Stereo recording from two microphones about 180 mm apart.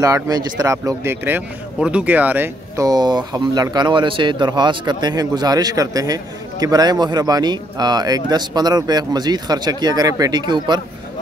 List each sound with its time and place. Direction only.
0.0 s a man's voice: 20° right (ahead or behind)